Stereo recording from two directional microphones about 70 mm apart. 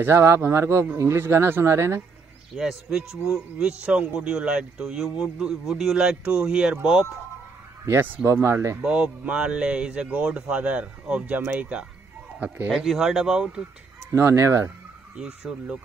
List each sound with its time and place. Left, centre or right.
0.0 s speech: right
2.5 s speech: centre
7.8 s speech: right
8.8 s speech: centre
12.7 s speech: centre
14.1 s speech: right
15.1 s speech: centre